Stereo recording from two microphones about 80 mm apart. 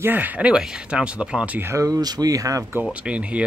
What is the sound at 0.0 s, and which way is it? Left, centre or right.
Speech, right.